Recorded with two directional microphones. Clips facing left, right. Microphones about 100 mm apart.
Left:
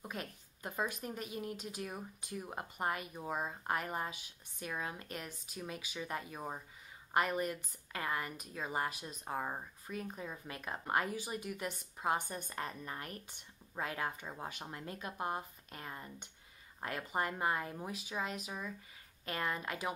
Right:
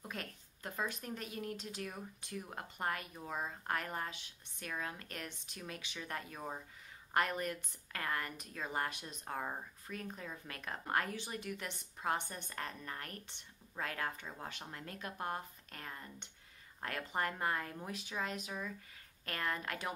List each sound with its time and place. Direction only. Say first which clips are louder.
0.0 s a woman's voice: left 2 dB; 10° left (ahead or behind)